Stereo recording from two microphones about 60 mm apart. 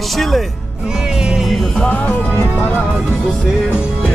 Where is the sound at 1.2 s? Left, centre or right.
Centre.